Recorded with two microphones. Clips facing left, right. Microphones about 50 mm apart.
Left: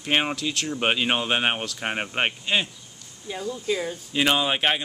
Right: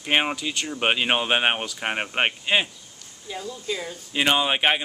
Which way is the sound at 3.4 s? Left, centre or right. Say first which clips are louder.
Left 4 dB; left.